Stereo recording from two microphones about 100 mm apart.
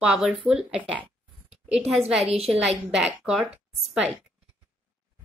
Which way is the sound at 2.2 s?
85° right.